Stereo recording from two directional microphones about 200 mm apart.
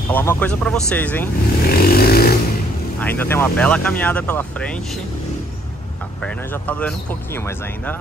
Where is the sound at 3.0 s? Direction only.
10° left (ahead or behind).